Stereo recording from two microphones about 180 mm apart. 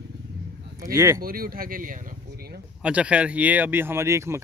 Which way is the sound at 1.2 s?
55° right (ahead or behind).